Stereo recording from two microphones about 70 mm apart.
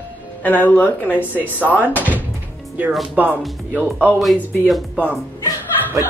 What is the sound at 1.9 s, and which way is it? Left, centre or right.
Speech, right.